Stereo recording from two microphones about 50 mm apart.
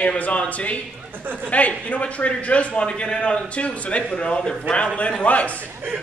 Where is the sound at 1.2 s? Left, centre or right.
Right.